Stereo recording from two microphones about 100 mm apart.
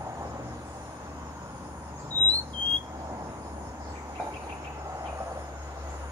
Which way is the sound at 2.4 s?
55° right (ahead or behind).